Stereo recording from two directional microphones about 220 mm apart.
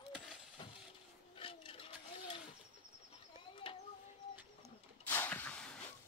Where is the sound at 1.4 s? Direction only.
25° left (ahead or behind).